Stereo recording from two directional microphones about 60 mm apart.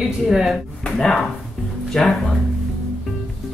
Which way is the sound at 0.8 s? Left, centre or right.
Centre.